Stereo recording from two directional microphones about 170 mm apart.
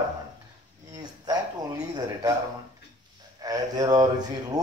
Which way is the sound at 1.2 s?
20° right (ahead or behind).